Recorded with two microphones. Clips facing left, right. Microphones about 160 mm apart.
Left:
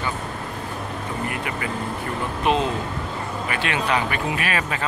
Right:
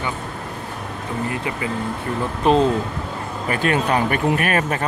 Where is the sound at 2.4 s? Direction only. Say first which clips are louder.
Right 6 dB; 35° right (ahead or behind).